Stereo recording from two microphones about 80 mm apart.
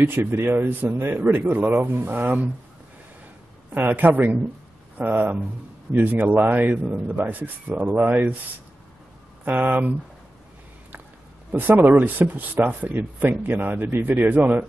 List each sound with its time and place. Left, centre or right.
0.0 s a man's voice: right
3.7 s a man's voice: right
9.4 s a man's voice: right
11.5 s a man's voice: right